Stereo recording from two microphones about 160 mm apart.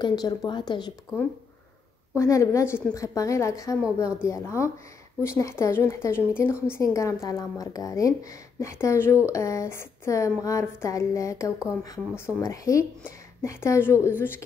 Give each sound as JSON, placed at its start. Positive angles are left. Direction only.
{"t": 0.0, "sound": "a woman's voice", "side_deg": 25}
{"t": 2.1, "sound": "a woman's voice", "side_deg": 20}